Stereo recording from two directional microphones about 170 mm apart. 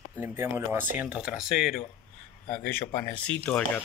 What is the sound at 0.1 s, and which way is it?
Speech, 15° right (ahead or behind).